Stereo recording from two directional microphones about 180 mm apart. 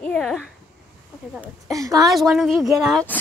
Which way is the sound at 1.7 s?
20° right (ahead or behind).